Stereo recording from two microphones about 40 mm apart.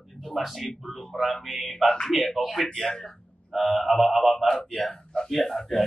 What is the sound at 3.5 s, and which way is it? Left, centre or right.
A man's voice, centre.